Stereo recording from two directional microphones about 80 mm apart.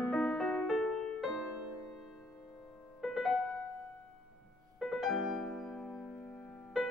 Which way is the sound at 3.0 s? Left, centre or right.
Centre.